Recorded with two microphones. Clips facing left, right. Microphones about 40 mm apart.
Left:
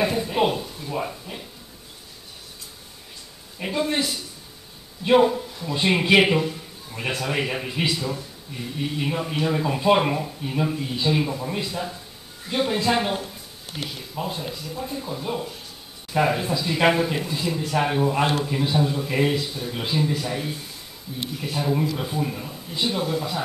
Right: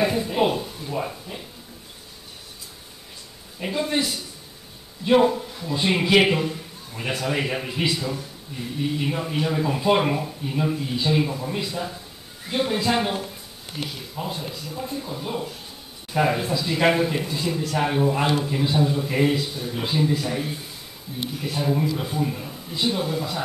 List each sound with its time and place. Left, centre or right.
0.0 s speech: centre
3.6 s a man's voice: centre
5.7 s a man's voice: centre
6.2 s a sound: centre
7.1 s speech: centre